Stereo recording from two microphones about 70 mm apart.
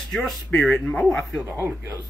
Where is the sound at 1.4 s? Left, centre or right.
Right.